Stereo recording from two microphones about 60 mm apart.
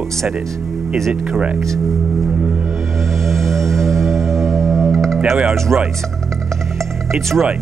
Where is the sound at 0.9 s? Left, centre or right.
Centre.